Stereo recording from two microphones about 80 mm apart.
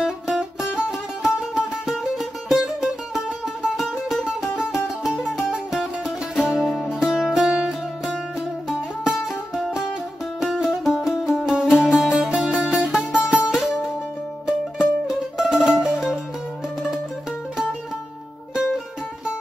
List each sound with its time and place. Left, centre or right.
0.0 s music: centre
10.4 s music: centre